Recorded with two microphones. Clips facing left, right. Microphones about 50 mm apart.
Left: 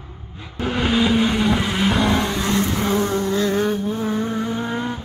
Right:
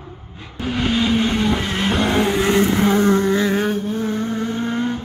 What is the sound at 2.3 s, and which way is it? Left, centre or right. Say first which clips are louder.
Vehicle: right 5 dB; right.